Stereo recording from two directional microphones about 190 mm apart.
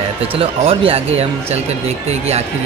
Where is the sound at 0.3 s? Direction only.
30° right (ahead or behind).